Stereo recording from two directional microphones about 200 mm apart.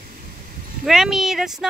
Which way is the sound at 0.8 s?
Centre (ahead or behind).